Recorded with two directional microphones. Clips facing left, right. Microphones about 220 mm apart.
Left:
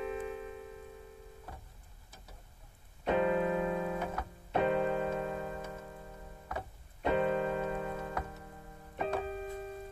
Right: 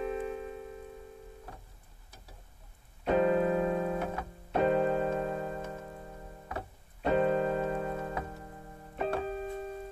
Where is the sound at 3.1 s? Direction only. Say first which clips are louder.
Right 3 dB; 40° right (ahead or behind).